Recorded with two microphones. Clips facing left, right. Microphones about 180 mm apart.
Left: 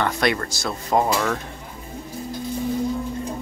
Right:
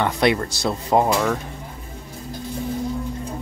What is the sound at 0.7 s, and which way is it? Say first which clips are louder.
Speech: right 2 dB; 10° right (ahead or behind).